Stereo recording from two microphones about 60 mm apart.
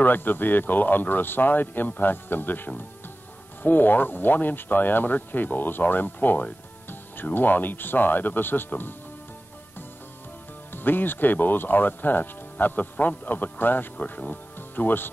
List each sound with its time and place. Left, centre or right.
0.0 s speech: left
10.7 s speech: left